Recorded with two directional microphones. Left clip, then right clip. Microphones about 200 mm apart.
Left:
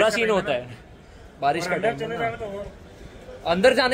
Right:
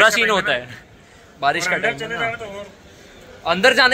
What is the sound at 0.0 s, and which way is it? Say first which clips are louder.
Speech: right 6 dB; 5° left (ahead or behind).